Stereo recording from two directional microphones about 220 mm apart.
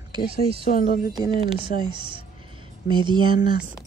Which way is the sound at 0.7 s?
40° left (ahead or behind).